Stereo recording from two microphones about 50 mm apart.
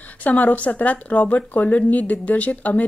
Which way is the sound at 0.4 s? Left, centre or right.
Left.